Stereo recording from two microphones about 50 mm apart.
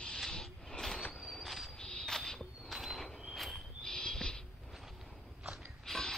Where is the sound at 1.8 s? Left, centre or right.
Centre.